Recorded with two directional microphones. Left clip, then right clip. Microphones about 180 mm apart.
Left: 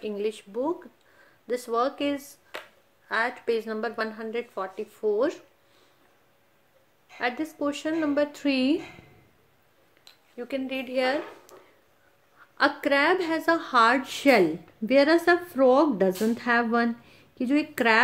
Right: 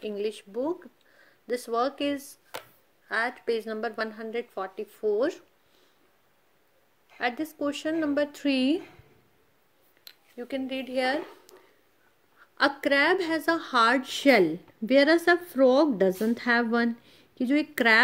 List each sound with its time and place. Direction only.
0.0 s speech: 25° right (ahead or behind)
7.2 s speech: 25° right (ahead or behind)
10.3 s speech: 25° right (ahead or behind)
12.5 s speech: 25° right (ahead or behind)